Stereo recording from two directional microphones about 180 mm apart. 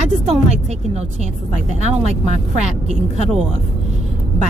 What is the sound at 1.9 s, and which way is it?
Speech, 40° right (ahead or behind).